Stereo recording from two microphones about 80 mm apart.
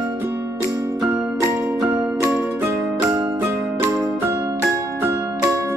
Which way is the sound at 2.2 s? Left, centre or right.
Right.